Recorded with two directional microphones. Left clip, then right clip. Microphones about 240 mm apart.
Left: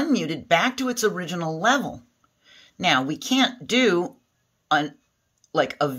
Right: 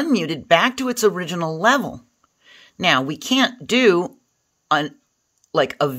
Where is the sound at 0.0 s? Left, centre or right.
Right.